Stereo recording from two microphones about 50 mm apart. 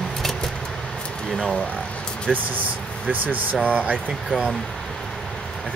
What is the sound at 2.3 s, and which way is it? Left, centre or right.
Speech, centre.